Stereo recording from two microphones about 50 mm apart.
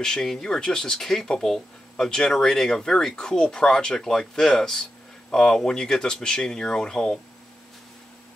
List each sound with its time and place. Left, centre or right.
0.0 s speech: centre